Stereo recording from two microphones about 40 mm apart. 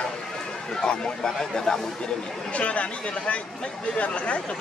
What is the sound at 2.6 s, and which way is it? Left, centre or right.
Speech, left.